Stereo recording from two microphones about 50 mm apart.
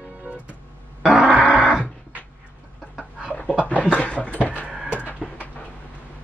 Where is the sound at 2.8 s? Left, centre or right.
Centre.